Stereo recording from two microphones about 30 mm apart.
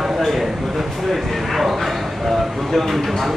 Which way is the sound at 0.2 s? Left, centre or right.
Centre.